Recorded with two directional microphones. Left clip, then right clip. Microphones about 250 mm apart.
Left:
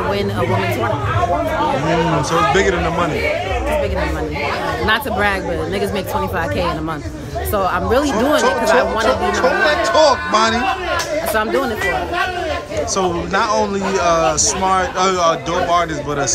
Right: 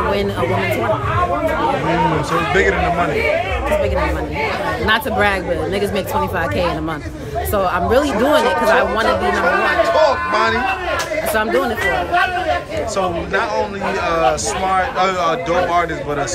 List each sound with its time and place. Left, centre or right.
2.5 s speech: centre
4.8 s speech: centre
7.5 s speech: centre
9.8 s speech: centre
13.3 s speech: centre